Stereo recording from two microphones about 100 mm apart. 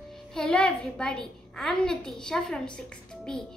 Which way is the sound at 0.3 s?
10° left (ahead or behind).